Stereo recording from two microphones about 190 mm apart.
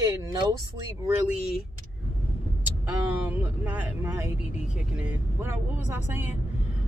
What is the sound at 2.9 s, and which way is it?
Vehicle, 10° right (ahead or behind).